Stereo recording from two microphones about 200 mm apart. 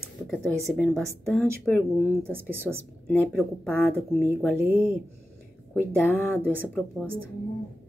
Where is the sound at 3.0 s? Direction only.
5° left (ahead or behind).